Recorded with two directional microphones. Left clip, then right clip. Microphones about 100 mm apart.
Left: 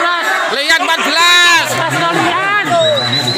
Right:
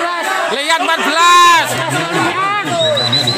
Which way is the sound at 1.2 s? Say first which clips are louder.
Right 2 dB; 35° right (ahead or behind).